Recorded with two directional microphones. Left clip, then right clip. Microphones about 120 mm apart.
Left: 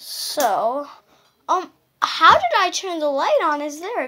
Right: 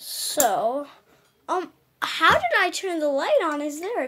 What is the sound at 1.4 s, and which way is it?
Speech, 45° right (ahead or behind).